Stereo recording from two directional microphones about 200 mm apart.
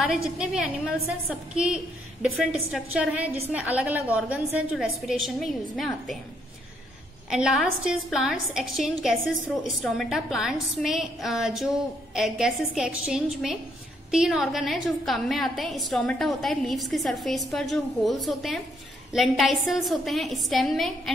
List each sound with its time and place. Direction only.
0.4 s a woman's voice: 5° right (ahead or behind)
7.2 s a woman's voice: 5° right (ahead or behind)